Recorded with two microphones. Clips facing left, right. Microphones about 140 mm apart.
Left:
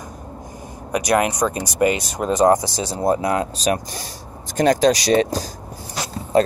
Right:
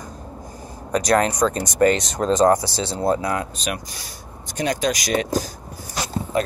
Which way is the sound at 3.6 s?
40° left (ahead or behind).